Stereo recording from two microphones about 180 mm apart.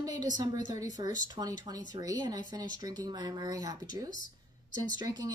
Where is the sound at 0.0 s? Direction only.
20° right (ahead or behind).